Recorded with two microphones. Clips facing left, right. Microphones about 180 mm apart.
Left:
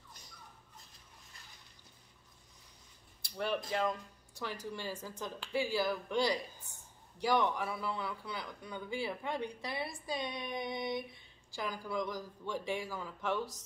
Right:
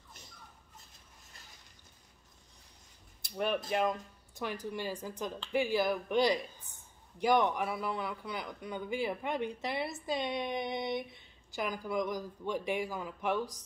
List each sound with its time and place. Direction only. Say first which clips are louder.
3.2 s a man's voice: right 3 dB; 20° right (ahead or behind)